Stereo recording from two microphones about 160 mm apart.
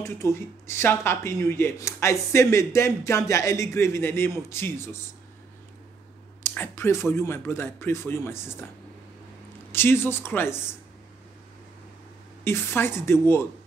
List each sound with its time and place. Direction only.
0.0 s speech: 15° left (ahead or behind)
6.4 s speech: 15° left (ahead or behind)
9.7 s speech: 15° left (ahead or behind)
12.4 s speech: 15° left (ahead or behind)